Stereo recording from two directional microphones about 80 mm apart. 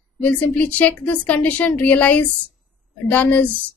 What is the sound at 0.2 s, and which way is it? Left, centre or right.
A woman's voice, centre.